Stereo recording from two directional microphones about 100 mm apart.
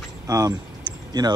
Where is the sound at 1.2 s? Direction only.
45° right (ahead or behind).